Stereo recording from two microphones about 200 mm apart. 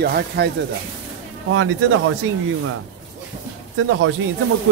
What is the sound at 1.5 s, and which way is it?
Speech, 85° right.